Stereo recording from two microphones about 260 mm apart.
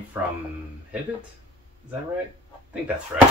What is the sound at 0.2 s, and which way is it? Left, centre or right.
Speech, centre.